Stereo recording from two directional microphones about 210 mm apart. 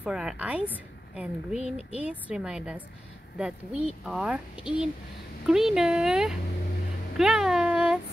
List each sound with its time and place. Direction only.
0.0 s a woman's voice: 5° right (ahead or behind)
1.6 s speech: 30° left (ahead or behind)
2.0 s speech: 5° right (ahead or behind)
5.5 s speech: centre (ahead or behind)